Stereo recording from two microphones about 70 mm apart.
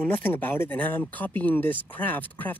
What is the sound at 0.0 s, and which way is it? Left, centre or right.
Speech, left.